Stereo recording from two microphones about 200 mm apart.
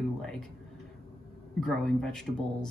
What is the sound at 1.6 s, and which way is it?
Speech, centre (ahead or behind).